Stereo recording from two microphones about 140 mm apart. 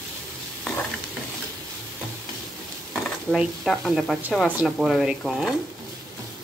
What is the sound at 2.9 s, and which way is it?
Speech, centre (ahead or behind).